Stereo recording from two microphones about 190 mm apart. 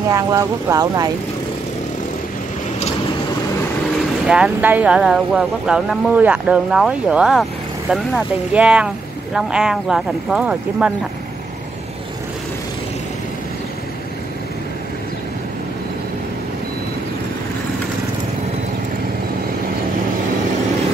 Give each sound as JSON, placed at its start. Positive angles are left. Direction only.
{"t": 0.1, "sound": "speech", "side_deg": -15}
{"t": 4.3, "sound": "speech", "side_deg": -5}